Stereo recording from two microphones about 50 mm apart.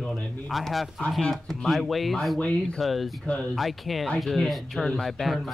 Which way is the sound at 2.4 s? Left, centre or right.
Centre.